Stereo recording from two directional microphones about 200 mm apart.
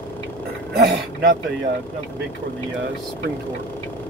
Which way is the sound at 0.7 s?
55° right (ahead or behind).